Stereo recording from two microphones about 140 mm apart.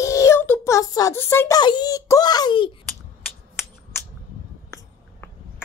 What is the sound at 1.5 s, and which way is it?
A child's voice, 30° left (ahead or behind).